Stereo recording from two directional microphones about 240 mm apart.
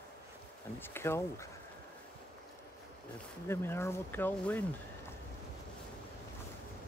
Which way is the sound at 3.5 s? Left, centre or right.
Centre.